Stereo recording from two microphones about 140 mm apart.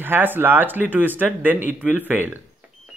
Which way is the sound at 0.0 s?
15° right (ahead or behind).